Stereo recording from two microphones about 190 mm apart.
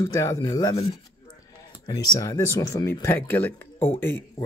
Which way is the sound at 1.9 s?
15° left (ahead or behind).